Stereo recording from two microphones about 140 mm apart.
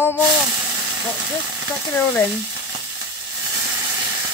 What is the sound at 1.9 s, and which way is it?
Speech, 15° left (ahead or behind).